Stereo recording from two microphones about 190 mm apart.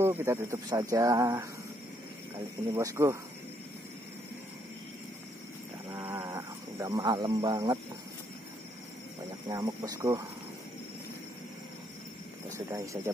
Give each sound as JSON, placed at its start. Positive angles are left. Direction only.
{"t": 0.0, "sound": "speech", "side_deg": -15}
{"t": 2.7, "sound": "speech", "side_deg": -15}
{"t": 5.9, "sound": "snake", "side_deg": -15}
{"t": 9.5, "sound": "speech", "side_deg": -20}
{"t": 12.5, "sound": "speech", "side_deg": -15}